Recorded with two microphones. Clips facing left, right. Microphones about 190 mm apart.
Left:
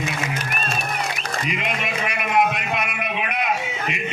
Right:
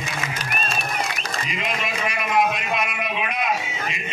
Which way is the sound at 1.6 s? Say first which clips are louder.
Left 1 dB; 60° left (ahead or behind).